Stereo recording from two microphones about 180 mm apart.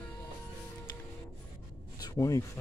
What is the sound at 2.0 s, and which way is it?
Speech, 20° left (ahead or behind).